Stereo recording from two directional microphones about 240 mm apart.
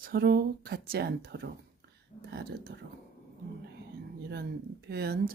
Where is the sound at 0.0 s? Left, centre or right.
Right.